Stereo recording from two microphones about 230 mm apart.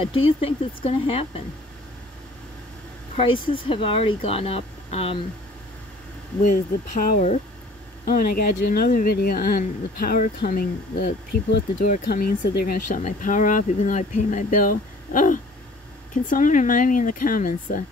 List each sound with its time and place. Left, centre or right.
0.4 s speech: left
3.2 s speech: left
6.4 s speech: left